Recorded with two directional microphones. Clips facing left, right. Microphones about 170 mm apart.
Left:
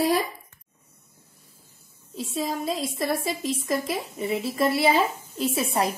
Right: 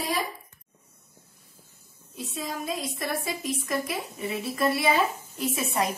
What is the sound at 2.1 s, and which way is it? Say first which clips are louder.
A woman's voice: left 5 dB; 25° left (ahead or behind).